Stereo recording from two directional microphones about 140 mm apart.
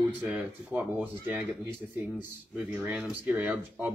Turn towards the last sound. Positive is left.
turn(degrees=-10)  # may be behind; listen again after turning